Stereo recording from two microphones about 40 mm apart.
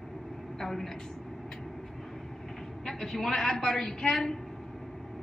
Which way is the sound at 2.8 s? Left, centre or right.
Centre.